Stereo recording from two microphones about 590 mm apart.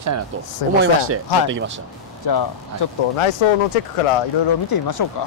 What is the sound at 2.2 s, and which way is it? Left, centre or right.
Speech, left.